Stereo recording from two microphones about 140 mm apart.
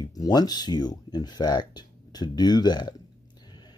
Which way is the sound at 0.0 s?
30° left (ahead or behind).